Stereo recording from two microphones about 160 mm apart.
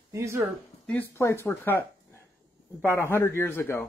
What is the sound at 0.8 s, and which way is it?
Speech, 10° left (ahead or behind).